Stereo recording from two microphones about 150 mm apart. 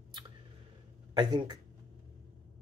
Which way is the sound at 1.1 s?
30° right (ahead or behind).